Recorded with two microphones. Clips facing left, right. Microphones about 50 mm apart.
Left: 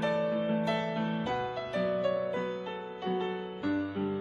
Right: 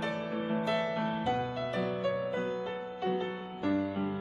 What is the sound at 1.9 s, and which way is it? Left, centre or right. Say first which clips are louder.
Music: left 2 dB; centre.